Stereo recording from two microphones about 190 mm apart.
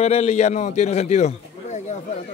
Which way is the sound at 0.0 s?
35° left (ahead or behind).